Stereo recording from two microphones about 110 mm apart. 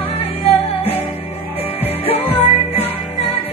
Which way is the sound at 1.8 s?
65° left (ahead or behind).